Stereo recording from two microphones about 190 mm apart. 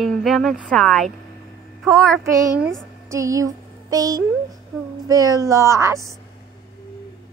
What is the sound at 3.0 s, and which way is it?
Speech, 15° right (ahead or behind).